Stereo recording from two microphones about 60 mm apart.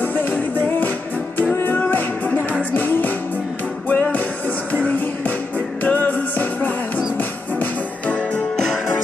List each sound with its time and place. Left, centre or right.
0.0 s music: left